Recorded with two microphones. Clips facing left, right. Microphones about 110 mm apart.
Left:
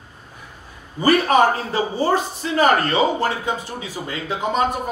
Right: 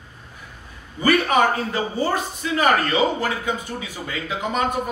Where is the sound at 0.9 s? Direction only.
35° left (ahead or behind).